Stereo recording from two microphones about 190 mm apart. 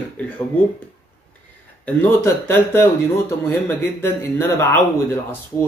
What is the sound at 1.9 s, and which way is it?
Speech, 10° left (ahead or behind).